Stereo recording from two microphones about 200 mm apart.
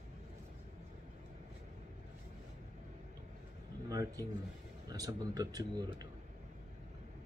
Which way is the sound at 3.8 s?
15° right (ahead or behind).